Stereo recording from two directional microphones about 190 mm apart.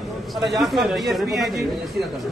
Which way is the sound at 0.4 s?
Centre (ahead or behind).